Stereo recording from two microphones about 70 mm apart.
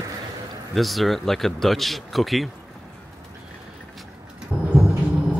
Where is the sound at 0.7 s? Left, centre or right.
Centre.